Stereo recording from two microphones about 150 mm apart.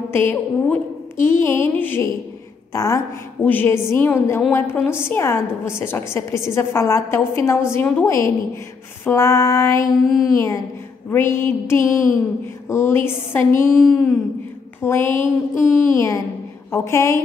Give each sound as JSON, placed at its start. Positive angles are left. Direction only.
{"t": 0.1, "sound": "a woman's voice", "side_deg": 15}
{"t": 2.7, "sound": "female singing", "side_deg": 20}
{"t": 3.4, "sound": "a woman's voice", "side_deg": 15}
{"t": 9.0, "sound": "female singing", "side_deg": 20}
{"t": 11.1, "sound": "a woman's voice", "side_deg": 15}
{"t": 13.7, "sound": "a sound", "side_deg": 5}
{"t": 14.8, "sound": "a woman's voice", "side_deg": 15}
{"t": 16.7, "sound": "female singing", "side_deg": 20}